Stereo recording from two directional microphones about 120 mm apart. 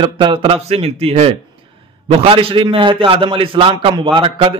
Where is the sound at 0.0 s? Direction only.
45° right (ahead or behind).